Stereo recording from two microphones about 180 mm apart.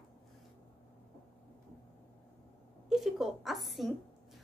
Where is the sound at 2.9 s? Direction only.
Centre (ahead or behind).